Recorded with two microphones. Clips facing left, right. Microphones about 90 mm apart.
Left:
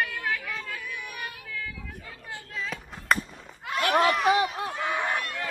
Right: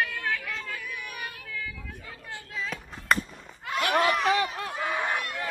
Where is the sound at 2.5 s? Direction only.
Centre (ahead or behind).